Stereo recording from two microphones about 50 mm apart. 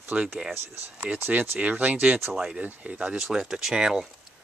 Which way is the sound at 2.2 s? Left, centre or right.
Centre.